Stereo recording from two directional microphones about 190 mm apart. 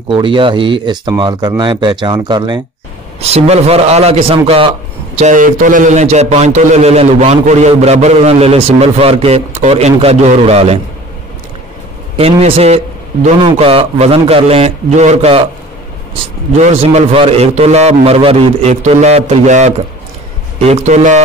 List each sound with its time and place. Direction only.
0.1 s speech: 25° right (ahead or behind)
3.2 s a man's voice: 35° right (ahead or behind)
5.3 s a man's voice: 45° right (ahead or behind)
12.2 s a man's voice: 30° right (ahead or behind)
16.6 s a man's voice: 35° right (ahead or behind)